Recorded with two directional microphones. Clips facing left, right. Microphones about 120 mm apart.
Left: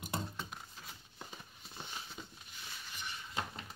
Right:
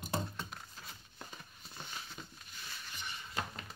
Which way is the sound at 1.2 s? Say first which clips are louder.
Left 1 dB; 20° left (ahead or behind).